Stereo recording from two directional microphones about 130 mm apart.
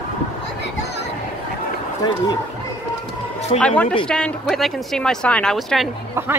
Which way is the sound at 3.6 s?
10° left (ahead or behind).